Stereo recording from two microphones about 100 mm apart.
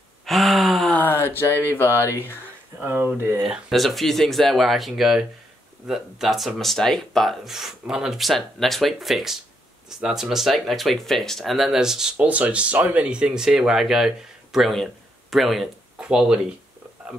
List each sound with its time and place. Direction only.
0.2 s gasp: centre (ahead or behind)
1.1 s speech: 25° left (ahead or behind)
2.8 s speech: 20° right (ahead or behind)
3.4 s speech: centre (ahead or behind)